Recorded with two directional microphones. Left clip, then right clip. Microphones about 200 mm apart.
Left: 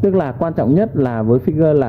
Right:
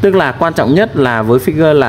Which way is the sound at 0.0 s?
10° right (ahead or behind).